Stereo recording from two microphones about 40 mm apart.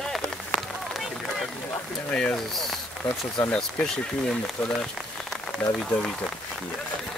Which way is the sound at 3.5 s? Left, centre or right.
Left.